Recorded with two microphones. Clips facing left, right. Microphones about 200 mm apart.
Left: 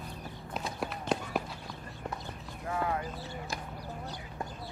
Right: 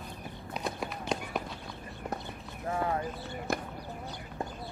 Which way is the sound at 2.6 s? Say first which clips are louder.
Right 2 dB; 35° right (ahead or behind).